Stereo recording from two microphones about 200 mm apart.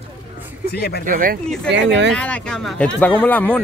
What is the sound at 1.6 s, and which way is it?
Speech, 60° right (ahead or behind).